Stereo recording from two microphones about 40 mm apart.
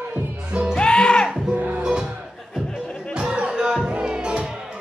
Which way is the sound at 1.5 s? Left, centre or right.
Right.